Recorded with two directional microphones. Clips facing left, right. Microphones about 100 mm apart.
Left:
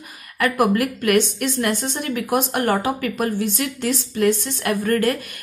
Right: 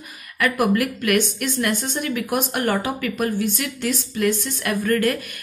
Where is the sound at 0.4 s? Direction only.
30° left (ahead or behind).